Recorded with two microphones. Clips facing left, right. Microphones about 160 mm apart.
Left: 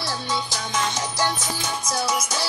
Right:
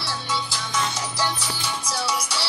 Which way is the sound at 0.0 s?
45° left (ahead or behind).